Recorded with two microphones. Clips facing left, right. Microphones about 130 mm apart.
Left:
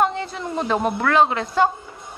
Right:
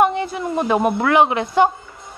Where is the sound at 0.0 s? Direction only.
15° right (ahead or behind).